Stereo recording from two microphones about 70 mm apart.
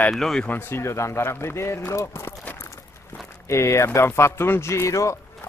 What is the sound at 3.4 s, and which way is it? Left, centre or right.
Speech, left.